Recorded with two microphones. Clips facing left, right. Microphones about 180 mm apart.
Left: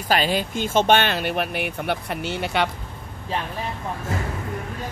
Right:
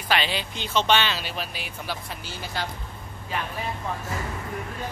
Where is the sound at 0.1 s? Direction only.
45° left (ahead or behind); by 2.7 s 70° left (ahead or behind).